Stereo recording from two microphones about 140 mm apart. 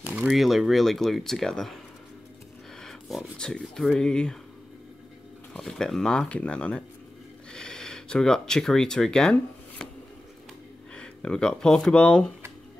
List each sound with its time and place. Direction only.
0.0 s a sound: 10° right (ahead or behind)
0.4 s speech: centre (ahead or behind)
2.8 s a sound: centre (ahead or behind)
4.0 s speech: 5° left (ahead or behind)
5.5 s speech: 5° left (ahead or behind)
11.0 s speech: 5° left (ahead or behind)